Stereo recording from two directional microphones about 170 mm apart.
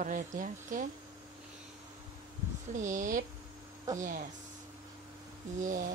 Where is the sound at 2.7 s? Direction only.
45° right (ahead or behind).